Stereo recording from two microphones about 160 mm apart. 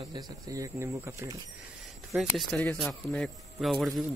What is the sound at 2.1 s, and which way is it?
Speech, centre (ahead or behind).